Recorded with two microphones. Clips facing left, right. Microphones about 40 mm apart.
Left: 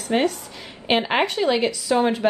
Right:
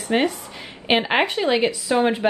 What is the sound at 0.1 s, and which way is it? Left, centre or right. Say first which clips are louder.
Speech: even; centre.